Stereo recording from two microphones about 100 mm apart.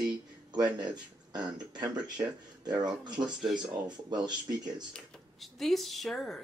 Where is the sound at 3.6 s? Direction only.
45° right (ahead or behind).